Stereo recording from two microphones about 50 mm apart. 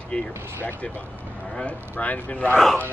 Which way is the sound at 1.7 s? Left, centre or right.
Left.